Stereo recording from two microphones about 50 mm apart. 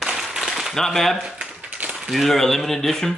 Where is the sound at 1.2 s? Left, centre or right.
Centre.